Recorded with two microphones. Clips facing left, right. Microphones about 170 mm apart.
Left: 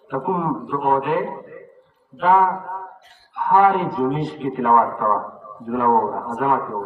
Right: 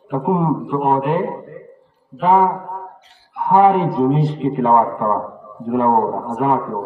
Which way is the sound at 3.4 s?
25° right (ahead or behind).